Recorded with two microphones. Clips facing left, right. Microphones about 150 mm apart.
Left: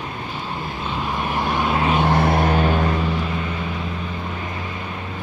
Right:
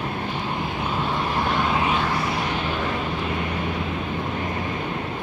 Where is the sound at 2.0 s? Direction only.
55° left (ahead or behind).